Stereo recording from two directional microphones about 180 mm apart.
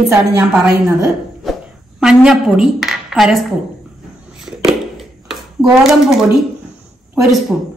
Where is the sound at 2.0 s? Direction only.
5° right (ahead or behind).